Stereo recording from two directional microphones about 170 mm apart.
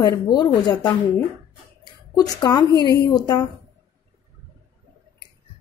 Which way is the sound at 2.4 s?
25° left (ahead or behind).